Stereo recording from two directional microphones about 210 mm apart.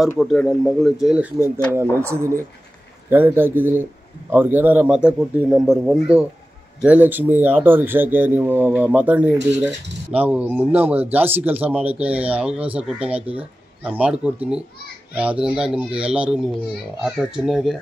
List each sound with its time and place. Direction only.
0.1 s speech: 5° left (ahead or behind)
1.4 s speech: 10° left (ahead or behind)
2.0 s speech: 10° right (ahead or behind)